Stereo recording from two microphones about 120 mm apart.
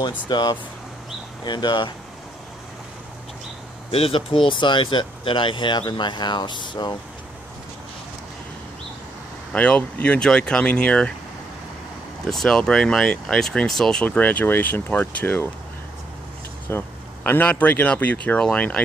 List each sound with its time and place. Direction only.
0.0 s speech: 35° left (ahead or behind)
3.9 s speech: 50° left (ahead or behind)
9.5 s speech: 10° left (ahead or behind)
12.3 s speech: 5° left (ahead or behind)
16.6 s speech: 20° left (ahead or behind)